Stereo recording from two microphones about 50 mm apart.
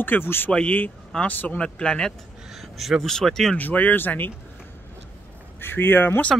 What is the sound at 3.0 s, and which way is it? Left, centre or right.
Speech, centre.